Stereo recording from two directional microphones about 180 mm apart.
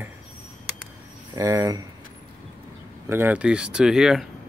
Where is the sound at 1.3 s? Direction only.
15° right (ahead or behind).